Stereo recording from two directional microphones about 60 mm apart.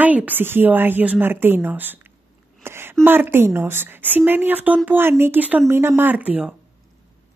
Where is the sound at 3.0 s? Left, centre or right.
Right.